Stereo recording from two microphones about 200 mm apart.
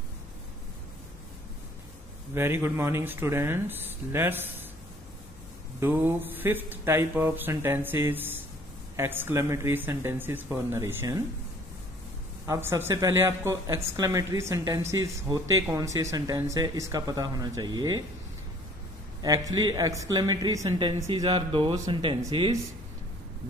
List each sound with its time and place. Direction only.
2.3 s speech: 10° right (ahead or behind)
5.8 s speech: 10° right (ahead or behind)
12.4 s speech: 10° right (ahead or behind)
19.2 s speech: 20° right (ahead or behind)